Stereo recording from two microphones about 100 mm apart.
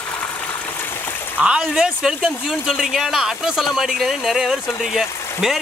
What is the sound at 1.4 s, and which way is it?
Speech, 5° right (ahead or behind).